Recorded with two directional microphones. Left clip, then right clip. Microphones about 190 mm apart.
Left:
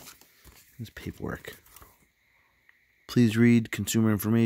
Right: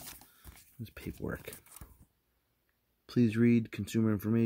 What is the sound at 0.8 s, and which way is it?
Speech, 20° left (ahead or behind).